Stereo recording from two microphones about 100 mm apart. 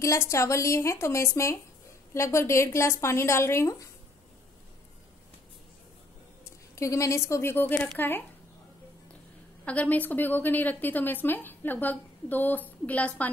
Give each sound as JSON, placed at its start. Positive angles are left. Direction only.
{"t": 0.0, "sound": "speech", "side_deg": 30}
{"t": 6.7, "sound": "speech", "side_deg": 30}
{"t": 9.7, "sound": "a woman's voice", "side_deg": 15}